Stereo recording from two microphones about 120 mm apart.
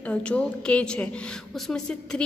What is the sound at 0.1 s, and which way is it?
A woman's voice, 10° left (ahead or behind).